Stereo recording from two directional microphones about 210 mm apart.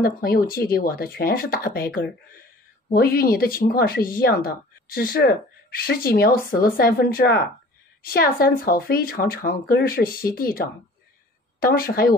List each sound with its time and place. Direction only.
0.0 s speech: 45° left (ahead or behind)
2.9 s speech: 45° left (ahead or behind)